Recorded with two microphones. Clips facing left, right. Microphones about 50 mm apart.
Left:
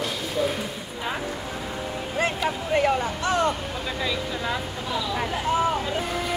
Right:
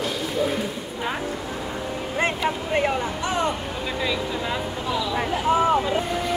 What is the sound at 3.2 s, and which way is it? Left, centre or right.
Speech, centre.